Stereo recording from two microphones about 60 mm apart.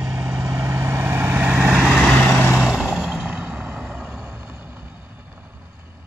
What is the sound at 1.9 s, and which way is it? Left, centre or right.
Vehicle, centre.